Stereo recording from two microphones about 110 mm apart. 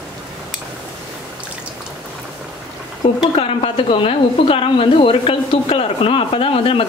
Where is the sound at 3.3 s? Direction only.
60° left (ahead or behind).